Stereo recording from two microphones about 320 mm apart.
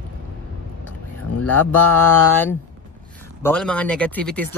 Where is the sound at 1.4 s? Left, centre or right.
Centre.